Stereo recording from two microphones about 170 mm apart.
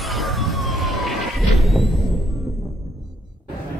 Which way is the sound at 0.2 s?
Centre (ahead or behind).